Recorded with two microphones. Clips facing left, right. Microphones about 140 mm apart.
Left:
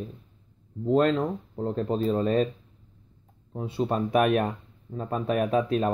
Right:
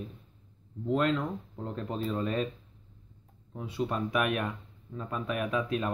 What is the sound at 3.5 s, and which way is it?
Speech, 30° left (ahead or behind).